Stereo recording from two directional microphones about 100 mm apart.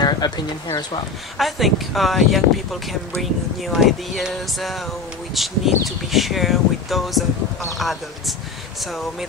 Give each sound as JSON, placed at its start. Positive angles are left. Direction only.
{"t": 0.2, "sound": "speech", "side_deg": 45}
{"t": 1.4, "sound": "speech", "side_deg": 0}